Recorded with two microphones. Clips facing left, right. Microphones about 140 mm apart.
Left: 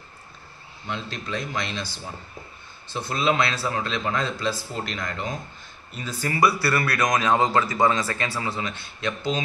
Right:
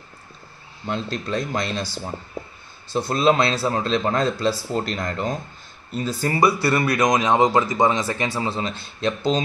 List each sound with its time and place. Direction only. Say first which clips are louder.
0.8 s a man's voice: right 6 dB; 40° right (ahead or behind)
2.9 s a man's voice: right 5 dB; 35° right (ahead or behind)
6.4 s a man's voice: right 3 dB; 20° right (ahead or behind)